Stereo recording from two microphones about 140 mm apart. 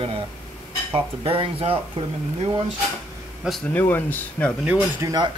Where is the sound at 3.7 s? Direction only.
15° left (ahead or behind).